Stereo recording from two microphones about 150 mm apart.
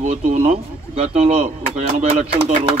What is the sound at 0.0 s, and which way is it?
A man's voice, 50° right (ahead or behind).